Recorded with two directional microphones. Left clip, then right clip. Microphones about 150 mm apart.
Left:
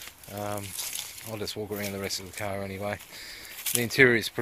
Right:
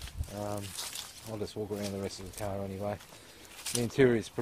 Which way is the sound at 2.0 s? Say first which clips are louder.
Left 5 dB; centre (ahead or behind).